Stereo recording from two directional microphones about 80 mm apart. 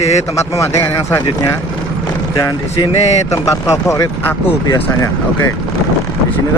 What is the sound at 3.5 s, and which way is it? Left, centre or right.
Speech, left.